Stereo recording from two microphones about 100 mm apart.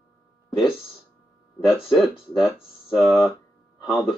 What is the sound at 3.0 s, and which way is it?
Speech, 25° left (ahead or behind).